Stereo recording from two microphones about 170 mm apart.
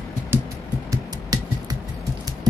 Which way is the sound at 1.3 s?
20° right (ahead or behind).